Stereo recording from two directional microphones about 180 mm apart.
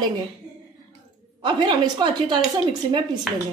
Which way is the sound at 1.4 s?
25° right (ahead or behind).